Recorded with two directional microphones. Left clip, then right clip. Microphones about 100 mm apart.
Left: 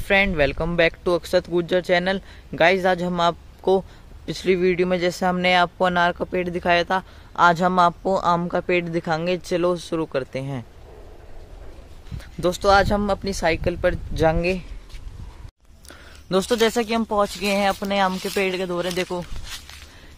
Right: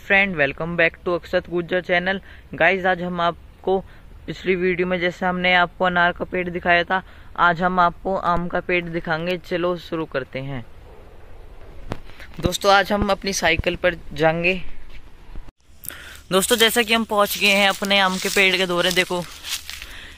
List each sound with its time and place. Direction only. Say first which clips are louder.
0.0 s speech: right 1 dB; 40° left (ahead or behind); by 3.8 s 55° left (ahead or behind)
4.3 s speech: left 1 dB; 40° left (ahead or behind)
7.3 s speech: left 1 dB; 45° left (ahead or behind)
12.2 s speech: left 1 dB; 20° left (ahead or behind)
15.9 s speech: right 2 dB; 5° left (ahead or behind)
18.7 s speech: right 5 dB; 20° right (ahead or behind)